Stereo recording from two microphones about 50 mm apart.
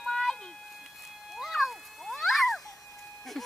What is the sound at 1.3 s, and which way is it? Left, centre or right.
Cat, centre.